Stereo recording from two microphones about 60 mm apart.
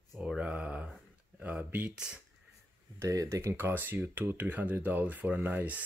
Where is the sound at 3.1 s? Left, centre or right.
Right.